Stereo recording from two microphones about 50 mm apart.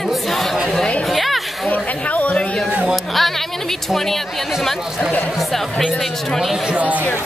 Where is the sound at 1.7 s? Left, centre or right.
Left.